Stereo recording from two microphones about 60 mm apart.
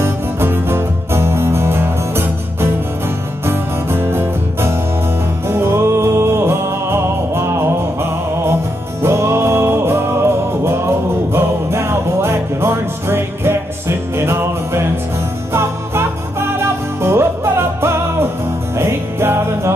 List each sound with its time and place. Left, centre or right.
0.0 s music: right
9.0 s music: right